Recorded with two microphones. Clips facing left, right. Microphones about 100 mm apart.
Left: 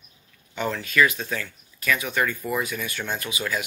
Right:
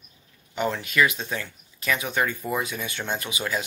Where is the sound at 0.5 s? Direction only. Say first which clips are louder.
Left 1 dB; 20° right (ahead or behind).